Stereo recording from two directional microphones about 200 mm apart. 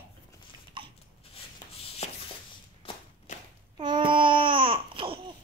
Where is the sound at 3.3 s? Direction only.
35° left (ahead or behind).